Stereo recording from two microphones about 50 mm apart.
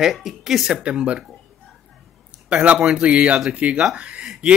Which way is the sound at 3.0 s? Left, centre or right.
Right.